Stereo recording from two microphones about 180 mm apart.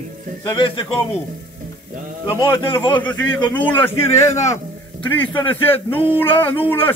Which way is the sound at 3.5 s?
10° left (ahead or behind).